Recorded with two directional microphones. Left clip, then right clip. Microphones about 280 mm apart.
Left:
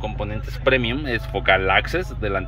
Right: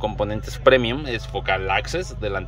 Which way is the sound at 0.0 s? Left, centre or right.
Right.